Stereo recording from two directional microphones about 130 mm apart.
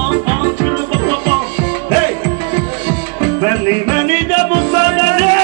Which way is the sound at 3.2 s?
25° right (ahead or behind).